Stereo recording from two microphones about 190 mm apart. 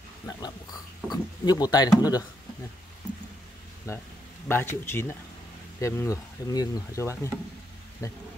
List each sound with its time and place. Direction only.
0.3 s dog: 20° left (ahead or behind)
1.1 s speech: 20° left (ahead or behind)
3.9 s speech: 15° left (ahead or behind)